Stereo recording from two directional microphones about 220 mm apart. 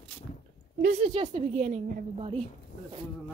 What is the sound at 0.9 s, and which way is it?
A woman's voice, 25° right (ahead or behind).